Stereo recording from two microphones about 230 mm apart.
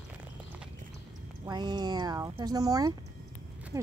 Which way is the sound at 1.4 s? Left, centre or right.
Centre.